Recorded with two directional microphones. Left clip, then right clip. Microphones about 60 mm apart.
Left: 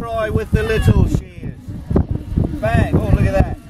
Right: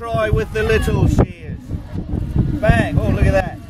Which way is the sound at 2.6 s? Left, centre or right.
Centre.